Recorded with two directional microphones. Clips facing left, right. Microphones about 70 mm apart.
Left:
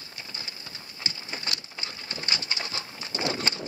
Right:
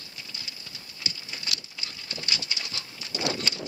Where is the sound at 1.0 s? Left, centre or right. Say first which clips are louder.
Left 2 dB; left.